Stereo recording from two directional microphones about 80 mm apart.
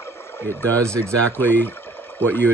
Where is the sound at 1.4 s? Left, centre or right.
Left.